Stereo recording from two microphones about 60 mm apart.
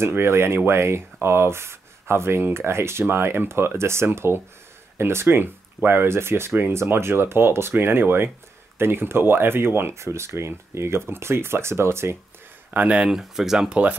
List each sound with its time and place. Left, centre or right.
0.0 s speech: right
12.7 s speech: right
13.1 s speech: centre